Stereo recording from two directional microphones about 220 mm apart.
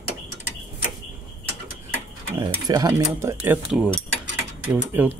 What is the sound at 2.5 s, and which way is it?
Cutlery, 15° right (ahead or behind).